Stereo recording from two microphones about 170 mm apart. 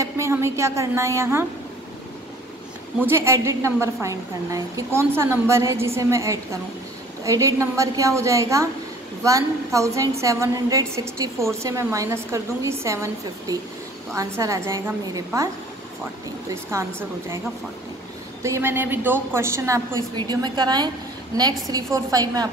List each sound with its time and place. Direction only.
0.0 s a woman's voice: 15° right (ahead or behind)
3.1 s a woman's voice: 15° right (ahead or behind)
18.4 s a woman's voice: 15° right (ahead or behind)